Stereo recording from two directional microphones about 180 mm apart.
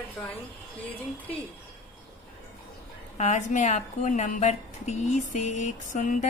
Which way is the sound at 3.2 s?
40° left (ahead or behind).